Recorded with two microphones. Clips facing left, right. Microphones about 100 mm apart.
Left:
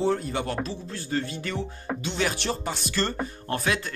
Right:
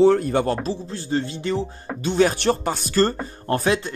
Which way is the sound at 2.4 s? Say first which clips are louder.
Right 8 dB; 55° right (ahead or behind).